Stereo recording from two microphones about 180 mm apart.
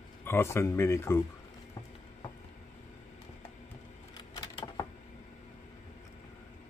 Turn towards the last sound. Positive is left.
turn(degrees=20)  # may be behind; listen again after turning